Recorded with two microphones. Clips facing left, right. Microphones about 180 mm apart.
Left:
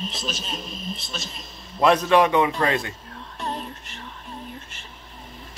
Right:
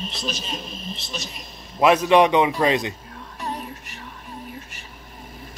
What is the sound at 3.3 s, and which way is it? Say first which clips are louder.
Music: even; 5° right (ahead or behind).